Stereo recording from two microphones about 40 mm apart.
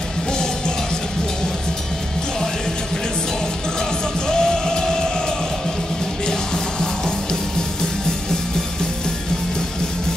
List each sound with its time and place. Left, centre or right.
4.3 s music: centre
6.2 s music: centre